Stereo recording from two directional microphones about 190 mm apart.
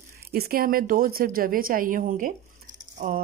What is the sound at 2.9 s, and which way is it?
Rattle, 40° right (ahead or behind).